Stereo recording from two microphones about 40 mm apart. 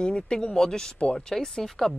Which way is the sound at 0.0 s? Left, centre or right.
Left.